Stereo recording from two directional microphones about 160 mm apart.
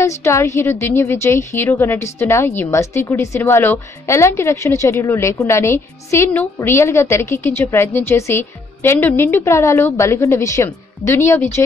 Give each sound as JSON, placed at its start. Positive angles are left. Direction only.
{"t": 0.0, "sound": "a woman's voice", "side_deg": 15}